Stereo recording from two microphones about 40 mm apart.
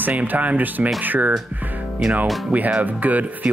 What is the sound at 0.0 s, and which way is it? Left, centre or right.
Speech, right.